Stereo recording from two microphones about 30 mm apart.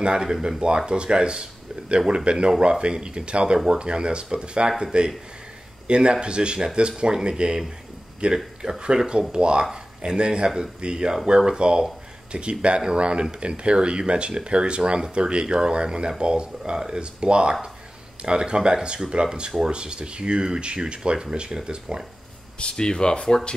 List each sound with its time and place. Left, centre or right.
0.0 s speech: right
8.6 s speech: right
22.6 s speech: left